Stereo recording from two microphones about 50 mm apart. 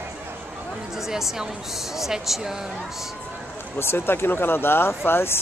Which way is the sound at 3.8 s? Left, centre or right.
Left.